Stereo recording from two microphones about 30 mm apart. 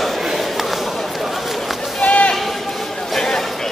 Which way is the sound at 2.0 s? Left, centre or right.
Left.